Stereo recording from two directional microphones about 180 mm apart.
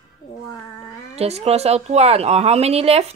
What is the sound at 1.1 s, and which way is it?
Speech, 35° right (ahead or behind).